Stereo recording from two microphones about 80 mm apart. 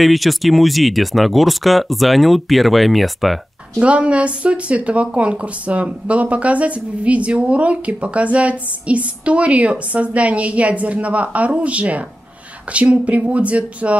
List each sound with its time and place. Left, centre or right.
0.0 s speech: centre
3.8 s speech: centre